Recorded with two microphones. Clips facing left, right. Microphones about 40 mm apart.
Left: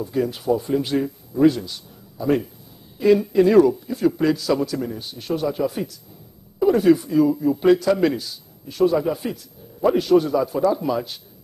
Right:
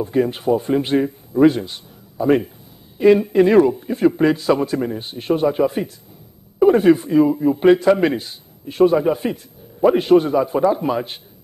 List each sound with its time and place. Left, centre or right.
0.0 s a man's voice: right